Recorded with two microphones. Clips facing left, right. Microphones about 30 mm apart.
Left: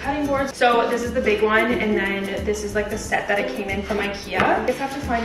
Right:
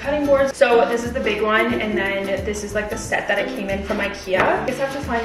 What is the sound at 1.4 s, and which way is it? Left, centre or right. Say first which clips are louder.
Speech: even; centre.